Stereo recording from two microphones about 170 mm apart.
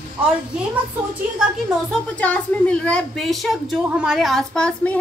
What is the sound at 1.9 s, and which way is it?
A woman's voice, 10° left (ahead or behind).